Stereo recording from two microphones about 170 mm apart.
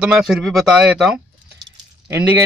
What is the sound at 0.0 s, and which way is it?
Speech, 5° right (ahead or behind).